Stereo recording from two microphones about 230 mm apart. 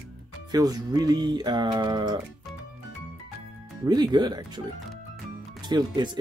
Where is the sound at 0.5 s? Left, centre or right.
Centre.